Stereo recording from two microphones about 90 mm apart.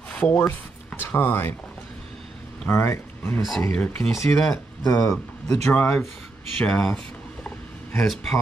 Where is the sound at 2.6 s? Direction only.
30° left (ahead or behind).